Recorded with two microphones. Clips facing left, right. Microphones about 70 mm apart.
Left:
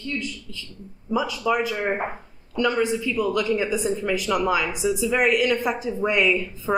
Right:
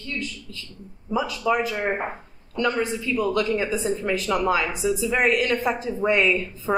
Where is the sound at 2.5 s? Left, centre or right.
Centre.